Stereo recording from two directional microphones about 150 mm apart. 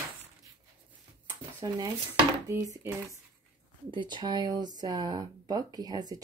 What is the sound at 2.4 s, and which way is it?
Dishes, 20° right (ahead or behind).